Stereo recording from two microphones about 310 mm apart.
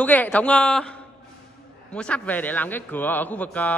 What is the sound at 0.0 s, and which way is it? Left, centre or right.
Speech, centre.